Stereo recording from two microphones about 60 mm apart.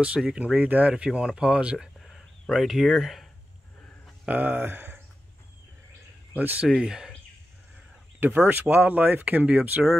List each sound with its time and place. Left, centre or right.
0.4 s speech: right
2.0 s a sound: centre
2.5 s speech: centre
4.3 s speech: right
6.3 s speech: right
6.6 s speech: centre
8.2 s speech: right